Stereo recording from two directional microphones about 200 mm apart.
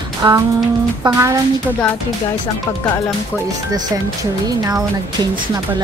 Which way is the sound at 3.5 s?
15° right (ahead or behind).